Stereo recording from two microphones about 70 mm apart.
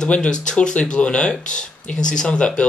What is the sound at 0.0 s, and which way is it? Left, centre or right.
Speech, centre.